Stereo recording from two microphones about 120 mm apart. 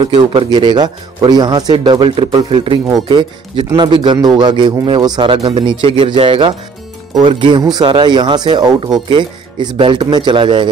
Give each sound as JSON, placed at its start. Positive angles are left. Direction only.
{"t": 0.3, "sound": "speech", "side_deg": -40}